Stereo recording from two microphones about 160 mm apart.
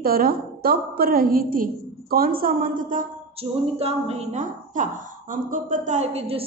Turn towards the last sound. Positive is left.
turn(degrees=-40)  # may be behind; listen again after turning